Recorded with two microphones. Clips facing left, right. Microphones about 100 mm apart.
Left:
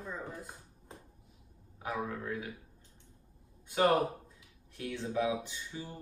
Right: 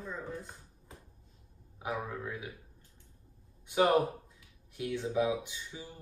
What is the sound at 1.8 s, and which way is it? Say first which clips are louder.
Speech: even; 15° right (ahead or behind).